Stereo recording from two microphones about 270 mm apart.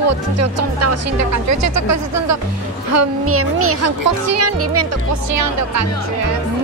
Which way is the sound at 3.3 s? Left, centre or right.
Right.